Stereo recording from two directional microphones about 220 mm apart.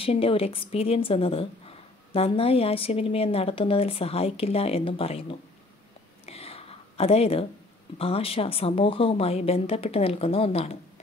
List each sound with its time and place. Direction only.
0.0 s a woman's voice: 25° left (ahead or behind)
6.2 s a sound: 25° left (ahead or behind)
8.0 s a woman's voice: 25° left (ahead or behind)